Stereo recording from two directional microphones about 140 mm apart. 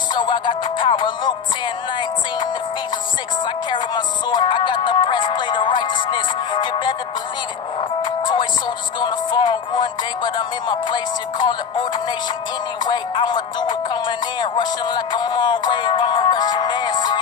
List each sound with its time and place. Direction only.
0.1 s music: 35° left (ahead or behind)
3.7 s music: 35° left (ahead or behind)
9.0 s music: 35° left (ahead or behind)